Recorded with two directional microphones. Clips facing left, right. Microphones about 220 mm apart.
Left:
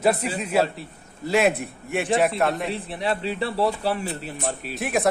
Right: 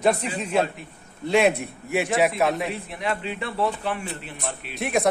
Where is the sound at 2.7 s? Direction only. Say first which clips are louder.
Left 2 dB; 30° left (ahead or behind).